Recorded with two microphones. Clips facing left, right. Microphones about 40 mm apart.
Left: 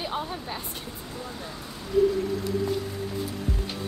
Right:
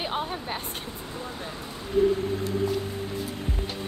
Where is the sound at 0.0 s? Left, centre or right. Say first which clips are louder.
Right 1 dB; right.